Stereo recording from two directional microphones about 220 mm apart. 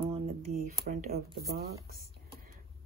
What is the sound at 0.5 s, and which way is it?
Speech, 40° right (ahead or behind).